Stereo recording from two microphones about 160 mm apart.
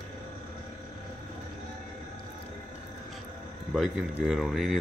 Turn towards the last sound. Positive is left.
turn(degrees=0)  # may be behind; listen again after turning